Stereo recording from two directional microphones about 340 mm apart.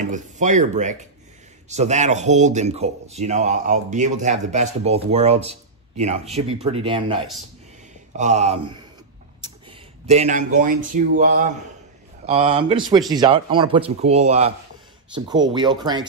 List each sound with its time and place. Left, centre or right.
0.0 s speech: right
8.2 s speech: centre
12.3 s speech: centre